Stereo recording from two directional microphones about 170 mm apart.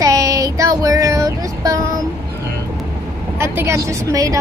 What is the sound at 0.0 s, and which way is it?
Child singing, 20° right (ahead or behind).